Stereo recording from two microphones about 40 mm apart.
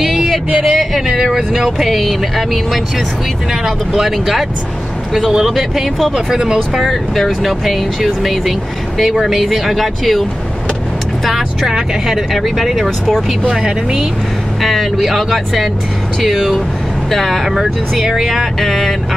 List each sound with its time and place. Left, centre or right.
0.0 s a sound: centre
1.5 s speech: centre
6.1 s speech: centre
6.7 s speech: centre
11.2 s speech: centre
12.4 s speech: centre
14.6 s speech: centre